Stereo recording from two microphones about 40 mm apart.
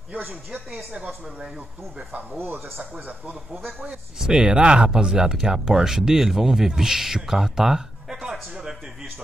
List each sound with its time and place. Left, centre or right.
2.3 s speech: right
2.8 s speech: right
4.2 s speech: right